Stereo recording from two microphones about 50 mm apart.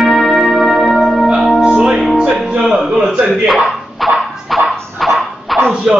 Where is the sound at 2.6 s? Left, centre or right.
Centre.